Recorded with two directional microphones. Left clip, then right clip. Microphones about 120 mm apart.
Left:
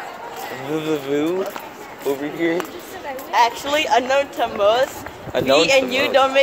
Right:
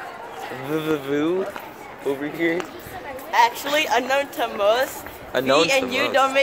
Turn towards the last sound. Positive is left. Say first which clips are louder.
# left 4 dB
turn(degrees=20)  # may be behind; listen again after turning